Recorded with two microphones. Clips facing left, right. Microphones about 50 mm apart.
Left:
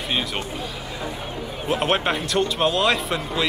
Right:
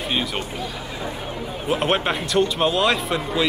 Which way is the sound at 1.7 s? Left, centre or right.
Centre.